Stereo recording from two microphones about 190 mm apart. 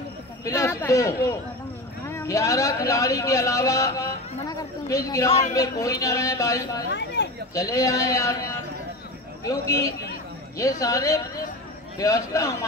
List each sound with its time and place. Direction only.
0.5 s a man's voice: 15° left (ahead or behind)
6.9 s a sound: 65° left (ahead or behind)
7.5 s speech: 15° left (ahead or behind)
9.4 s speech: 15° left (ahead or behind)